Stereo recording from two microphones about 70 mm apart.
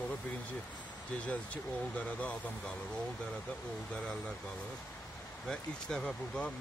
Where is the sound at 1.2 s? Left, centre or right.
Centre.